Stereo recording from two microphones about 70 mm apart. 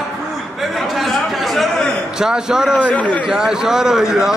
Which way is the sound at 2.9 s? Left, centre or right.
Left.